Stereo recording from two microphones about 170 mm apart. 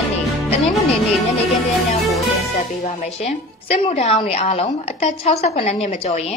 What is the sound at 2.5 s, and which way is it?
A woman's voice, 40° left (ahead or behind).